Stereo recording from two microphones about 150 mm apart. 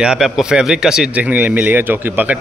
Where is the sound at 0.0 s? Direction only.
5° right (ahead or behind).